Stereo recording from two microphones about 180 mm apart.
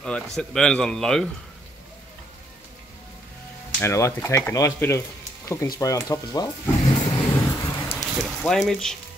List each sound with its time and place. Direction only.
0.4 s a man's voice: 5° left (ahead or behind)
3.8 s speech: 15° left (ahead or behind)
5.8 s vehicle: 20° left (ahead or behind)
8.0 s speech: centre (ahead or behind)